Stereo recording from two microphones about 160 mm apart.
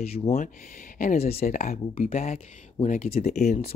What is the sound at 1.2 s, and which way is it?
Speech, 40° left (ahead or behind).